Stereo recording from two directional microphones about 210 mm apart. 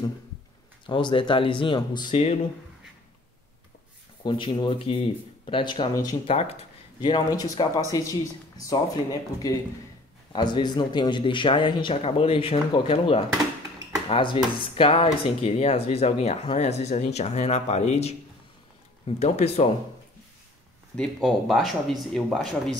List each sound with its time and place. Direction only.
0.8 s a man's voice: 25° left (ahead or behind)
4.2 s a man's voice: 20° left (ahead or behind)
20.9 s speech: centre (ahead or behind)